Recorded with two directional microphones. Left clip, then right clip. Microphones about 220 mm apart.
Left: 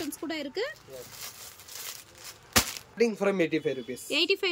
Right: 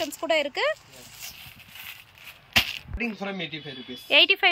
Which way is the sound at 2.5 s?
25° left (ahead or behind).